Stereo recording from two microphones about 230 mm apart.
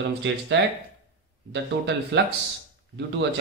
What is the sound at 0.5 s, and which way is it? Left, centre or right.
Speech, right.